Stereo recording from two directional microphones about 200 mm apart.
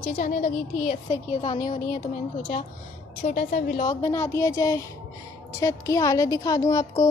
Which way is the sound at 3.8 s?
20° left (ahead or behind).